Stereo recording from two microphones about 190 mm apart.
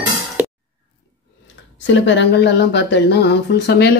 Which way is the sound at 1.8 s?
75° left (ahead or behind).